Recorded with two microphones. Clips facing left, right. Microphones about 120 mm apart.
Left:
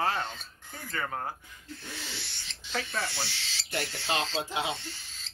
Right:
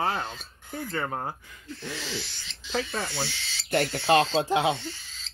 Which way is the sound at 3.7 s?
55° right (ahead or behind).